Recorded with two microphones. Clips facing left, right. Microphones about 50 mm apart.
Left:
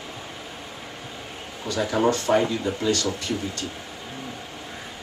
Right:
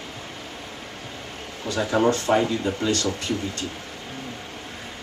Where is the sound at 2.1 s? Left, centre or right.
Right.